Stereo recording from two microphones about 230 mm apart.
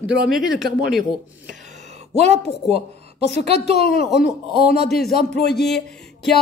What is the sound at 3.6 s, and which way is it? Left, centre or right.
Speech, left.